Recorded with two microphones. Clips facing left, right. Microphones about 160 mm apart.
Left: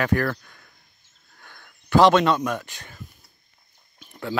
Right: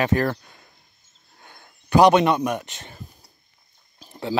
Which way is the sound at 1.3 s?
20° right (ahead or behind).